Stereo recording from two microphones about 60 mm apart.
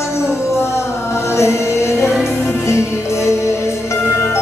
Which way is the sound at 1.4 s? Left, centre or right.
Left.